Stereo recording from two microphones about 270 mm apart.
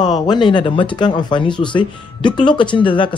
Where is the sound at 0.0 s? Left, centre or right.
Centre.